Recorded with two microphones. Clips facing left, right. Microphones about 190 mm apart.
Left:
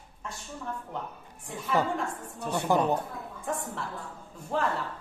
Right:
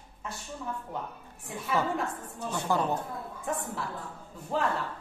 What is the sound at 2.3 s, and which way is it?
Speech, 65° left (ahead or behind).